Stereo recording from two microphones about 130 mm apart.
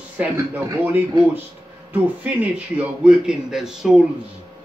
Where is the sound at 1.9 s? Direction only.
10° right (ahead or behind).